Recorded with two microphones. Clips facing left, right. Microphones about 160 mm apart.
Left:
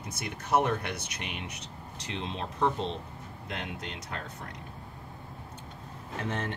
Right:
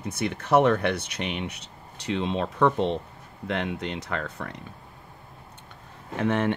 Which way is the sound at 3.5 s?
75° right (ahead or behind).